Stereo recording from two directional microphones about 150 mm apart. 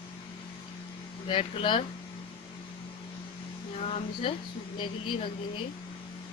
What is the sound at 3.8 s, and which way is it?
Speech, 40° left (ahead or behind).